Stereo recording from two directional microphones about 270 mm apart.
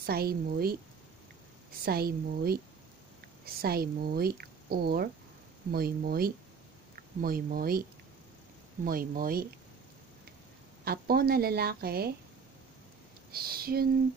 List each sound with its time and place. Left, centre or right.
0.0 s speech: right
1.9 s speech: right
8.8 s speech: right
10.8 s speech: right
13.3 s speech: right